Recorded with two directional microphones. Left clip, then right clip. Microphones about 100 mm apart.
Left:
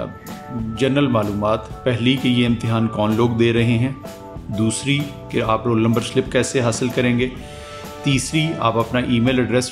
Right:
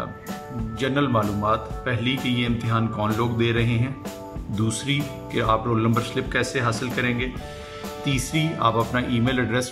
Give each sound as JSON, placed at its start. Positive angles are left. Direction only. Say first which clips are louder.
{"t": 0.7, "sound": "speech", "louder": "left 4 dB", "side_deg": 15}